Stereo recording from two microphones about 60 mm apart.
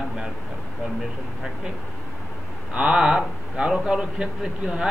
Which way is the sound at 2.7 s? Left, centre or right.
Centre.